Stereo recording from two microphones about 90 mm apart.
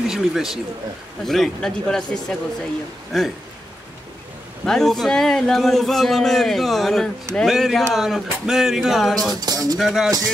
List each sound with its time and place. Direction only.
0.0 s a man's voice: 5° right (ahead or behind)
4.6 s a man's voice: 5° left (ahead or behind)
9.3 s a sound: 45° right (ahead or behind)
9.8 s a man's voice: 5° right (ahead or behind)